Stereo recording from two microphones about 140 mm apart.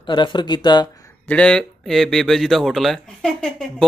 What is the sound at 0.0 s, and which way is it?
Speech, 35° left (ahead or behind).